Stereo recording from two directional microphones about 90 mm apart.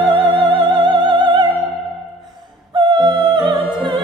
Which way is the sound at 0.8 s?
55° right (ahead or behind).